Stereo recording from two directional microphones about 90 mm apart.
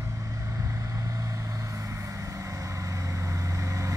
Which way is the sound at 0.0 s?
35° right (ahead or behind).